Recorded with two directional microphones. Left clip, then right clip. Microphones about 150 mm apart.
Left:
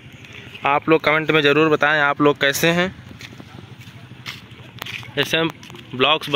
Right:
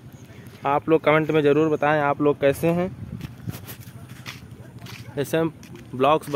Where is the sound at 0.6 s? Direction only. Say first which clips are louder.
Left 3 dB; 5° left (ahead or behind).